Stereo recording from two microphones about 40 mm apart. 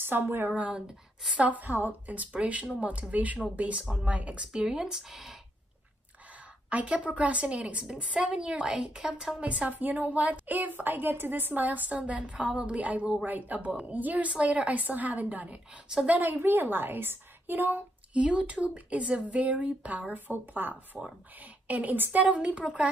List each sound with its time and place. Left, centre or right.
0.0 s speech: right
1.3 s speech: right
2.3 s speech: right
4.6 s speech: centre
6.3 s a sound: right
7.2 s a woman's voice: right; by 9.4 s centre
9.4 s a woman's voice: right
13.2 s a woman's voice: right
13.7 s a woman's voice: right
13.9 s a woman's voice: right
14.3 s speech: right
16.3 s a child's voice: right
18.1 s a woman's voice: right
22.4 s a woman's voice: right